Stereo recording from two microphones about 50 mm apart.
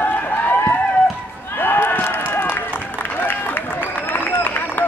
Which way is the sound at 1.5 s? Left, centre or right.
Left.